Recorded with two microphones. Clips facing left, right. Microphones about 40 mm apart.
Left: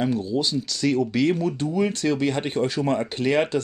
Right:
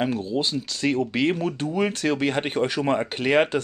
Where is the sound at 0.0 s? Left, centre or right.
Right.